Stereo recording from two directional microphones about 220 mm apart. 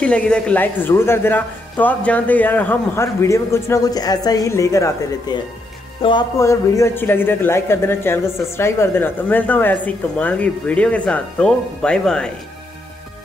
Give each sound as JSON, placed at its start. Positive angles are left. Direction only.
{"t": 0.0, "sound": "a man's voice", "side_deg": 5}